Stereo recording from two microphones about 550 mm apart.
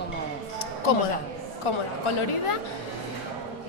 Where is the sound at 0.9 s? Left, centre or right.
Left.